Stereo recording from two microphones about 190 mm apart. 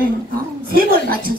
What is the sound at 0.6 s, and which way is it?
Speech, 50° right (ahead or behind).